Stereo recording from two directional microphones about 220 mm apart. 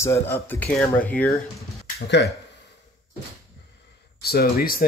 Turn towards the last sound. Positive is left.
turn(degrees=45)  # may be behind; listen again after turning